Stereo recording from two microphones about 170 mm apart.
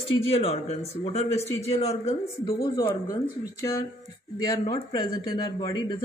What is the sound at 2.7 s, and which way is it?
Speech, 25° left (ahead or behind).